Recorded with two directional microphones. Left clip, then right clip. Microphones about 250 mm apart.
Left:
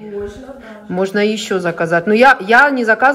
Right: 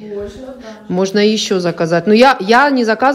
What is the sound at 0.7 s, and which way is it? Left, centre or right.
Speech, centre.